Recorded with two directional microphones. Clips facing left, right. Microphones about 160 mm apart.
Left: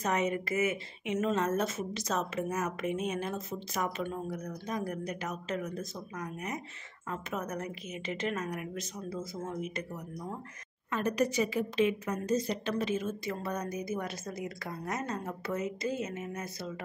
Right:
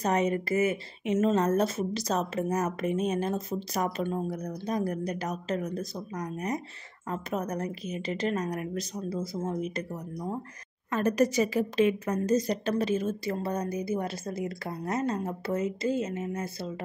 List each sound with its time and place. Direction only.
0.0 s speech: 35° right (ahead or behind)
10.9 s a woman's voice: 45° right (ahead or behind)